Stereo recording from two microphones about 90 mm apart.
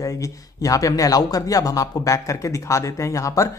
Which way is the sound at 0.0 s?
40° left (ahead or behind).